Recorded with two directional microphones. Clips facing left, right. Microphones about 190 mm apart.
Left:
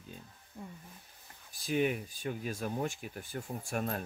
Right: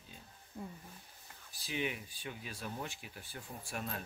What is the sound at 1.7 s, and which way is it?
Speech, 45° left (ahead or behind).